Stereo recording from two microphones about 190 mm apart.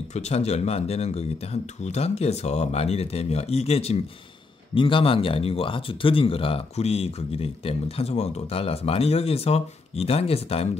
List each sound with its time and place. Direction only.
0.1 s speech: 35° left (ahead or behind)